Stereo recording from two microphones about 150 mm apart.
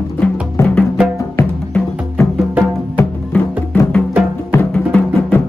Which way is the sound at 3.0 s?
15° left (ahead or behind).